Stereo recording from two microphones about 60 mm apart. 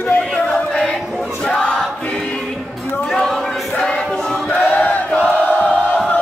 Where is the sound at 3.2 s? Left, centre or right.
Centre.